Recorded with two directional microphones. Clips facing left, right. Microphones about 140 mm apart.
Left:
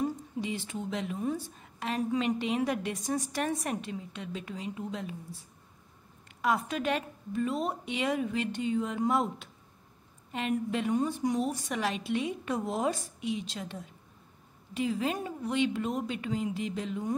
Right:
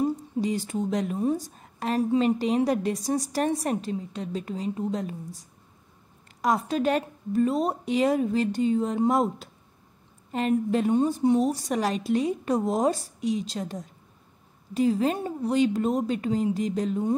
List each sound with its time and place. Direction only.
0.0 s speech: 40° right (ahead or behind)